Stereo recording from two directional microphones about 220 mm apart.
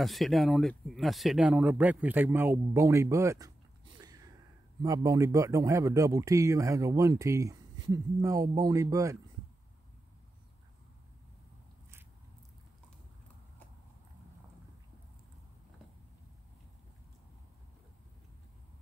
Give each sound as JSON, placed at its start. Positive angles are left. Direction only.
{"t": 0.0, "sound": "speech", "side_deg": 0}
{"t": 4.0, "sound": "a sound", "side_deg": -15}
{"t": 4.8, "sound": "speech", "side_deg": -15}